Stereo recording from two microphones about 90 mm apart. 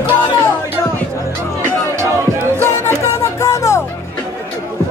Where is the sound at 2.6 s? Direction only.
25° left (ahead or behind).